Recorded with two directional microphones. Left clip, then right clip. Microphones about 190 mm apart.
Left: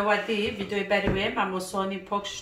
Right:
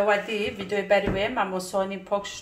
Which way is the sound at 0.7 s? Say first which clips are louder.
Right 5 dB; 60° right (ahead or behind).